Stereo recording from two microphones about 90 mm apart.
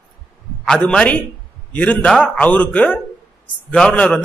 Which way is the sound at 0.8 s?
10° left (ahead or behind).